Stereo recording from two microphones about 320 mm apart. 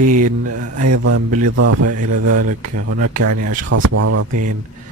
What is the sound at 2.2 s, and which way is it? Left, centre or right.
Speech, right.